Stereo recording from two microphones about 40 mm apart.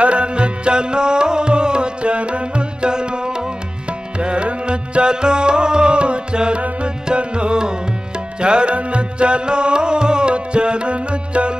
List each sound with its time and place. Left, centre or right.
0.0 s tabla: right
4.2 s music: right